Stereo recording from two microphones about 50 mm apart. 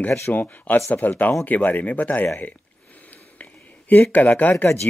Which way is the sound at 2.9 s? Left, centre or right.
Left.